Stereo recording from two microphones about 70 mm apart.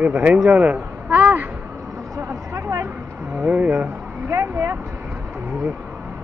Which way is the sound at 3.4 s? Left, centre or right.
Right.